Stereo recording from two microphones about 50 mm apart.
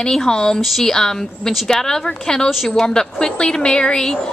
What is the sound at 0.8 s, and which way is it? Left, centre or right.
A woman's voice, centre.